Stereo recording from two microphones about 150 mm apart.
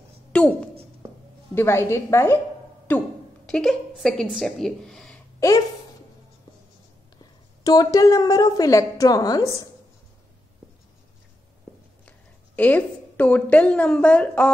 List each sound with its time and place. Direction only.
0.3 s a woman's voice: 5° left (ahead or behind)
7.6 s a woman's voice: 25° left (ahead or behind)
12.5 s a woman's voice: 10° left (ahead or behind)